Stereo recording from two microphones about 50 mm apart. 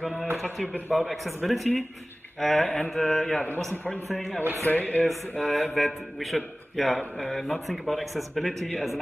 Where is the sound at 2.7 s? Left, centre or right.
Centre.